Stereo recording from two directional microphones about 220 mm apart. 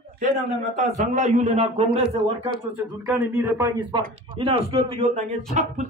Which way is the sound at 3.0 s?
10° right (ahead or behind).